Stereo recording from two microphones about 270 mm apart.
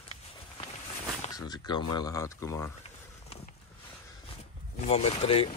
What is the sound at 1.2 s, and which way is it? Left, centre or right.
Speech, centre.